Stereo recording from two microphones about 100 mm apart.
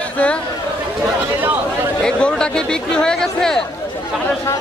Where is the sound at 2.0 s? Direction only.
5° left (ahead or behind).